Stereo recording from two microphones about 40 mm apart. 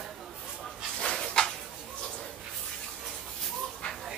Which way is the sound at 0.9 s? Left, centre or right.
Centre.